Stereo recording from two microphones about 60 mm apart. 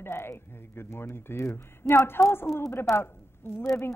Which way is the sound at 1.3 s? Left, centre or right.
Left.